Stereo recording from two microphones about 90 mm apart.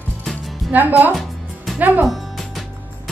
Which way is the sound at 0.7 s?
20° right (ahead or behind).